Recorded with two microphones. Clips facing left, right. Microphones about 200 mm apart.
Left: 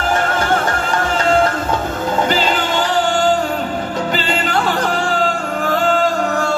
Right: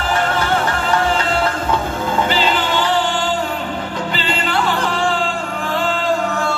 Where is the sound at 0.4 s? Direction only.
45° left (ahead or behind).